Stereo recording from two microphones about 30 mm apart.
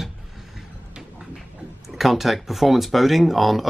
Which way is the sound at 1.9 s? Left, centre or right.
Centre.